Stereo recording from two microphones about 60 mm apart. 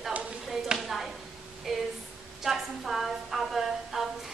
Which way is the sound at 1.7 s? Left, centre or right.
Centre.